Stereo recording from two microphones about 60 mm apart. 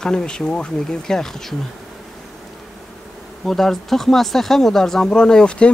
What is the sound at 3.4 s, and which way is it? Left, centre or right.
Speech, centre.